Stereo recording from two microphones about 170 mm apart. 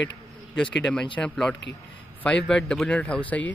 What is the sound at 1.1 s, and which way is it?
Speech, 5° left (ahead or behind).